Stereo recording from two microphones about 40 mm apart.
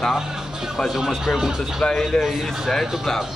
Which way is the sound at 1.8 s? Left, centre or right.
Left.